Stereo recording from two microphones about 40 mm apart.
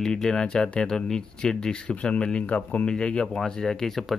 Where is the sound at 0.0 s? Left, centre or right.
Centre; by 2.9 s left.